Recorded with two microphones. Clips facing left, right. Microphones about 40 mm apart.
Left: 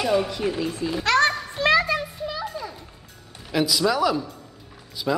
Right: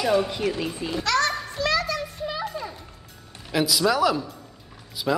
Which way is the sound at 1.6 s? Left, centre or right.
Left.